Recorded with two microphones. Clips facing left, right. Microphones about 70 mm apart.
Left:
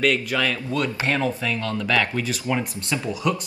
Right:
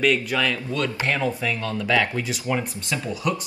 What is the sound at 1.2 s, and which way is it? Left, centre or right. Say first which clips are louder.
Speech: even; centre.